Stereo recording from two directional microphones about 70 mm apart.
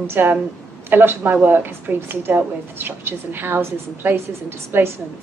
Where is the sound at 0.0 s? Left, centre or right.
Right.